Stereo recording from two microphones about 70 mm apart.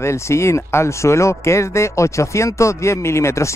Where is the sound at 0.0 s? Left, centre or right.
Left.